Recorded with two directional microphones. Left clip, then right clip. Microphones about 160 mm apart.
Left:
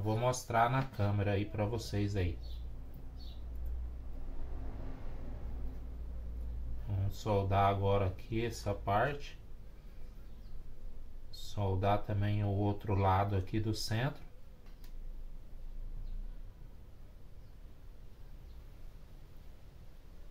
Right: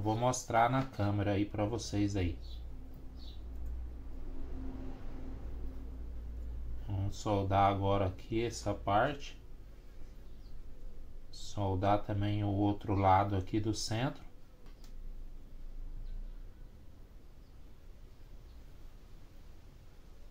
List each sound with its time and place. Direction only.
0.0 s speech: 20° right (ahead or behind)
7.0 s speech: 15° right (ahead or behind)
11.5 s speech: 20° right (ahead or behind)